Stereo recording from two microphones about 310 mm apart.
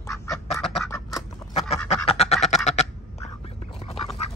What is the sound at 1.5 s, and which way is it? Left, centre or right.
Duck, left.